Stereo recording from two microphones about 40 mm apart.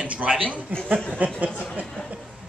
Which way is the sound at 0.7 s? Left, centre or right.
Right.